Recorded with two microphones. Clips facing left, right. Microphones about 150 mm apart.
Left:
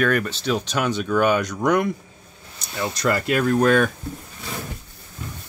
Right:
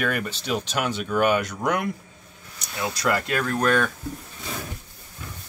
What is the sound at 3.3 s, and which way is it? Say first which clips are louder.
Speech: left 5 dB; 10° left (ahead or behind).